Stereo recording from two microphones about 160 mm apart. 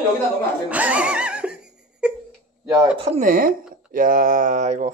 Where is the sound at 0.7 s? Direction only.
10° right (ahead or behind).